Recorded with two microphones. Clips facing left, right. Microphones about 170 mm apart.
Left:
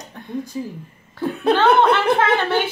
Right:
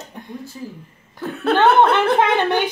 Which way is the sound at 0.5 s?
10° left (ahead or behind).